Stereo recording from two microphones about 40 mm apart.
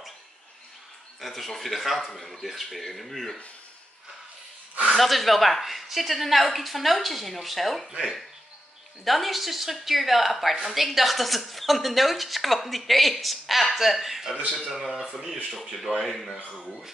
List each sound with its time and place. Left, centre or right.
1.2 s speech: centre
4.9 s speech: centre
14.3 s a man's voice: right
14.7 s speech: centre